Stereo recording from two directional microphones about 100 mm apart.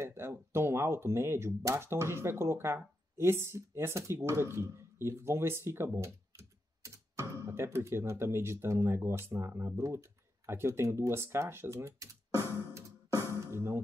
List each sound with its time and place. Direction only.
0.0 s speech: 25° right (ahead or behind)
12.7 s music: 30° right (ahead or behind)